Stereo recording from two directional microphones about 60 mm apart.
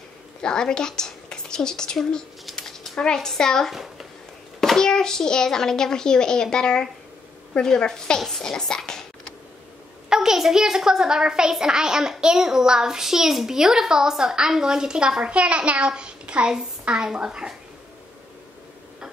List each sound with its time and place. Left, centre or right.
0.4 s a woman's voice: centre
10.0 s a child's voice: centre